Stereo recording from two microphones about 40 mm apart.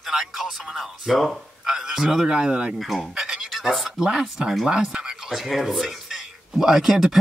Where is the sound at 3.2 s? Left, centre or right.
Centre.